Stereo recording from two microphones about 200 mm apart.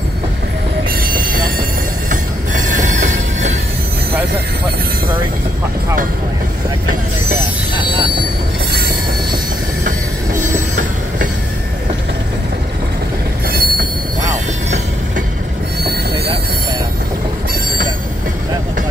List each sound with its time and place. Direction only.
1.0 s train: 45° right (ahead or behind)
2.5 s train wheels squealing: 40° right (ahead or behind)
7.7 s train: 25° right (ahead or behind)
9.8 s music: 40° right (ahead or behind)
13.5 s train wheels squealing: 45° right (ahead or behind)